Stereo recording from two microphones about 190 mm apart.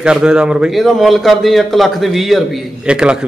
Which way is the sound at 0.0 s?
5° right (ahead or behind).